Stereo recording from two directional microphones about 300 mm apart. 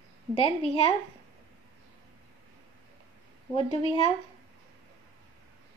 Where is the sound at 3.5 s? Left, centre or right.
Centre.